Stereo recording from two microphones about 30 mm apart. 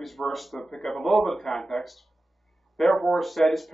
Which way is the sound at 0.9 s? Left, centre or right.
Centre.